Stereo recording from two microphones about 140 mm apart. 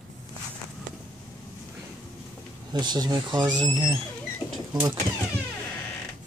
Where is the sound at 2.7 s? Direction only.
30° right (ahead or behind).